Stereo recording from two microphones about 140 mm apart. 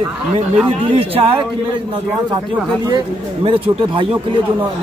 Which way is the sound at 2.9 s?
40° right (ahead or behind).